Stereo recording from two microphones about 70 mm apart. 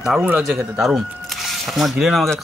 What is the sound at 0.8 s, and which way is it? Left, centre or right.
Speech, centre.